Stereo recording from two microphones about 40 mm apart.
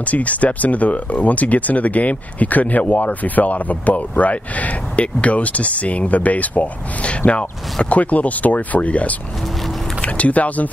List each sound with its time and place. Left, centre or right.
0.0 s speech: left